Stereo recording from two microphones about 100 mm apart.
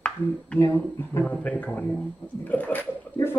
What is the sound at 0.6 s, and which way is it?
Speech, 25° left (ahead or behind).